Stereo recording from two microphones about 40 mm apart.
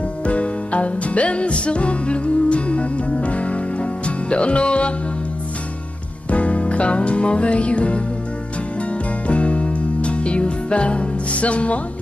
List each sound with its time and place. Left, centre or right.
0.2 s music: left
6.3 s music: left
9.3 s music: left